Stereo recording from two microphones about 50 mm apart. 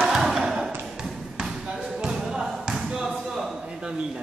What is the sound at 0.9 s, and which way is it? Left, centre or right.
Basketball bounce, centre.